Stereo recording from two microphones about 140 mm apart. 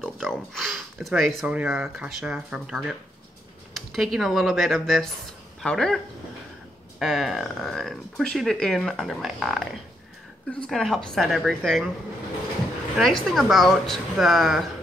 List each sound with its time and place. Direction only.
0.0 s a sound: centre (ahead or behind)
1.4 s speech: 5° right (ahead or behind)
7.0 s speech: centre (ahead or behind)
12.9 s speech: centre (ahead or behind)